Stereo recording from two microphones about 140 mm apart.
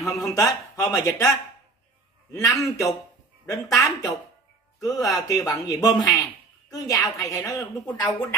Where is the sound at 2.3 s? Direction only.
25° left (ahead or behind).